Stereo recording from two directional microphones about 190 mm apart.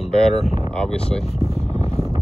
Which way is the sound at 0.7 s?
5° left (ahead or behind).